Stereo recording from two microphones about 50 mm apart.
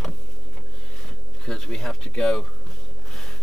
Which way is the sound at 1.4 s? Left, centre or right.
Centre.